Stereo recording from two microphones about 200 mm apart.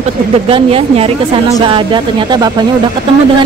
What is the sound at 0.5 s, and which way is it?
A woman's voice, 25° right (ahead or behind).